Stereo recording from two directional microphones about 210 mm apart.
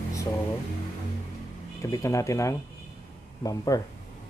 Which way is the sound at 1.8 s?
15° left (ahead or behind).